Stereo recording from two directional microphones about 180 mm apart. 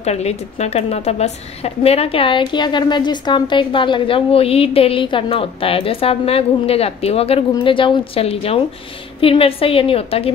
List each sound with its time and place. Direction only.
0.0 s a woman's voice: 35° left (ahead or behind)